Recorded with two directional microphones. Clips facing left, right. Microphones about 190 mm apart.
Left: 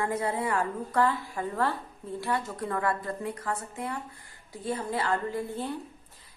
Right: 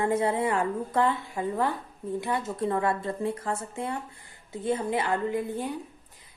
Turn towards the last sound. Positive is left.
turn(degrees=-15)  # may be behind; listen again after turning